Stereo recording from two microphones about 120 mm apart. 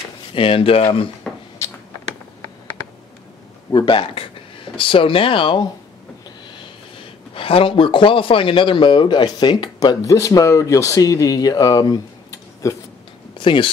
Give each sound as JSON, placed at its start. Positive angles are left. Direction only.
{"t": 0.3, "sound": "speech", "side_deg": 50}
{"t": 1.3, "sound": "a sound", "side_deg": 10}
{"t": 3.7, "sound": "speech", "side_deg": 45}
{"t": 13.4, "sound": "speech", "side_deg": 45}